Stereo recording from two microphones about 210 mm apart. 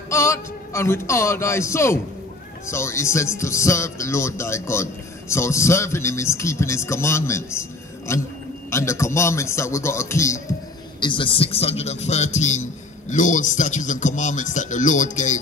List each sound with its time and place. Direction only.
0.1 s a man's voice: 15° left (ahead or behind); by 15.3 s 35° left (ahead or behind)